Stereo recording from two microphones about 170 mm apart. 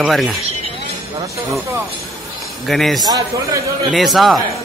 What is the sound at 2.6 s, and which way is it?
Speech, centre (ahead or behind).